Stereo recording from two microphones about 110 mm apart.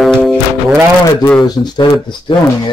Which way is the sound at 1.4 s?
40° left (ahead or behind).